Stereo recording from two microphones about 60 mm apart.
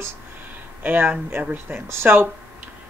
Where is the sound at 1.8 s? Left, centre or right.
Right.